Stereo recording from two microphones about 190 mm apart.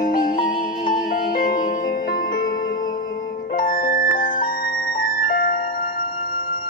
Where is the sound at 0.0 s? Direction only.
45° left (ahead or behind).